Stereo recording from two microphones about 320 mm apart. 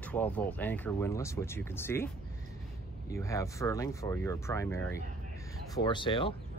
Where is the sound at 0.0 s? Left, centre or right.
Centre.